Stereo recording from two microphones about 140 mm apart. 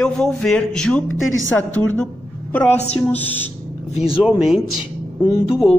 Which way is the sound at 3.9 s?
40° left (ahead or behind).